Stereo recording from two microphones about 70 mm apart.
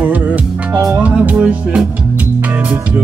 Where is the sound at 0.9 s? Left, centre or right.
Centre.